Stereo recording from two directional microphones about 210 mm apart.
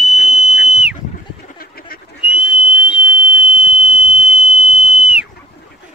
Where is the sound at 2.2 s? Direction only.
5° right (ahead or behind).